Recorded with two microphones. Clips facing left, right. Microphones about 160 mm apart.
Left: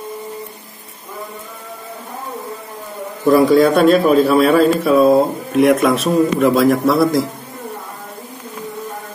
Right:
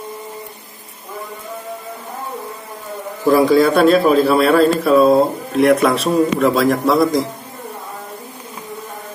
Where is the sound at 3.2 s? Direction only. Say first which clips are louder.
Left 1 dB; centre (ahead or behind).